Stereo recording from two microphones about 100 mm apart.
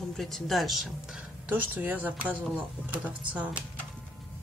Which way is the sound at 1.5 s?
15° right (ahead or behind).